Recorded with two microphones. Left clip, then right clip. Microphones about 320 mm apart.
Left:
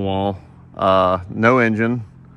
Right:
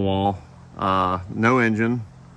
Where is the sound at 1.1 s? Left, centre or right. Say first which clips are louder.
Left 4 dB; centre.